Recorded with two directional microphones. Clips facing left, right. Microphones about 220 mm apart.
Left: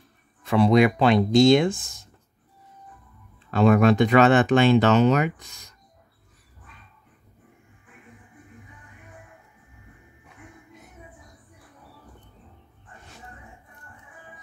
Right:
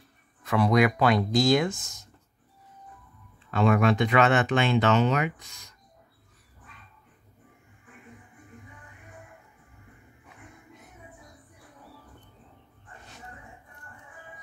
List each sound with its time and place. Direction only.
0.4 s speech: 30° left (ahead or behind)
3.5 s speech: 40° left (ahead or behind)